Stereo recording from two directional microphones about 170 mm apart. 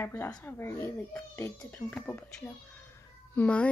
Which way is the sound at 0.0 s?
15° left (ahead or behind).